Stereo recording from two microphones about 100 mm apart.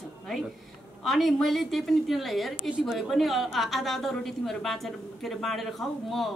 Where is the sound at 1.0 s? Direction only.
Centre (ahead or behind).